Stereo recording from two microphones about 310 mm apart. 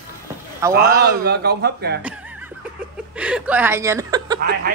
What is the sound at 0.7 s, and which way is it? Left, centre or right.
Speech, right.